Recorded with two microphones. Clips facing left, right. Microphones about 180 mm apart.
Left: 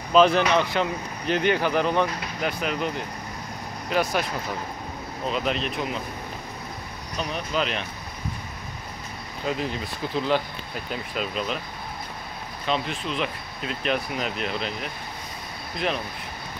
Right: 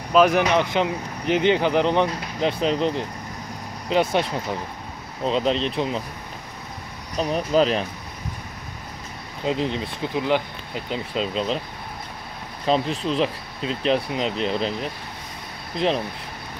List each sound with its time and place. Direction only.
0.1 s speech: 10° right (ahead or behind); by 5.9 s 30° right (ahead or behind)
7.2 s speech: 35° right (ahead or behind)
9.5 s speech: 25° right (ahead or behind)
12.6 s speech: 35° right (ahead or behind)